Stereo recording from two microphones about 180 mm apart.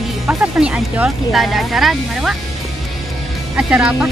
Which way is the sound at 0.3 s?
5° right (ahead or behind).